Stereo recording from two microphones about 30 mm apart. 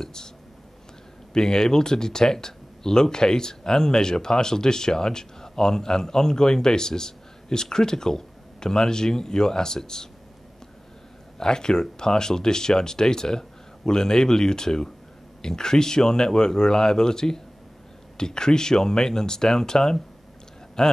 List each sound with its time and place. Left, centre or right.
0.0 s whispering: centre
1.3 s speech: left
11.3 s speech: left